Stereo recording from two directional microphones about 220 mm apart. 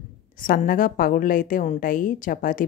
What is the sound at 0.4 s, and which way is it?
Speech, 40° left (ahead or behind).